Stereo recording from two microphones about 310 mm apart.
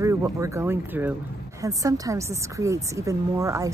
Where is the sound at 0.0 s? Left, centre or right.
Centre.